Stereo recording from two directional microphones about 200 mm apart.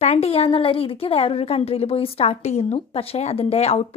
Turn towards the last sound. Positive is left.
turn(degrees=30)  # may be behind; listen again after turning